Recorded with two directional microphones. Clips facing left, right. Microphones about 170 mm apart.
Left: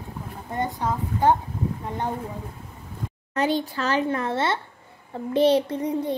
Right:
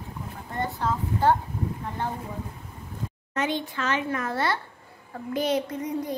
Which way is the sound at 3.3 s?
35° left (ahead or behind).